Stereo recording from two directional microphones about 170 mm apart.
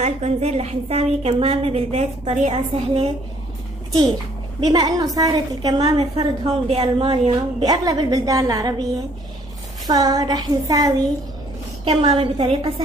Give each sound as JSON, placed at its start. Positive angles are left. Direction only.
{"t": 0.0, "sound": "a woman's voice", "side_deg": -40}
{"t": 4.6, "sound": "a woman's voice", "side_deg": -25}
{"t": 5.9, "sound": "a woman's voice", "side_deg": -35}
{"t": 7.6, "sound": "a woman's voice", "side_deg": -25}
{"t": 9.8, "sound": "a woman's voice", "side_deg": -20}
{"t": 11.8, "sound": "a woman's voice", "side_deg": -35}